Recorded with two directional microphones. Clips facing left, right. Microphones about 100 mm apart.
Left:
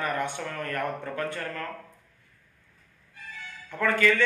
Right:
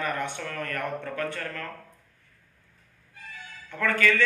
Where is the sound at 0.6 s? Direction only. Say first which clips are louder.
Left 1 dB; 25° left (ahead or behind).